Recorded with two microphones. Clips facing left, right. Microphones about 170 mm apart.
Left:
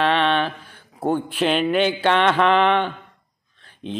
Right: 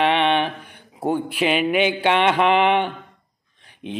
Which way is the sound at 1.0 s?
10° right (ahead or behind).